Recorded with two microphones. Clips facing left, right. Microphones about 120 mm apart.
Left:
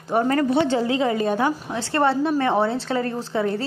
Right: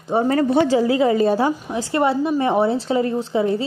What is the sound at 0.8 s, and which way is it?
Speech, 30° left (ahead or behind).